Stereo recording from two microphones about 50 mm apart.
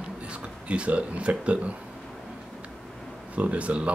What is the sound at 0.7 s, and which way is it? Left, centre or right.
Speech, right.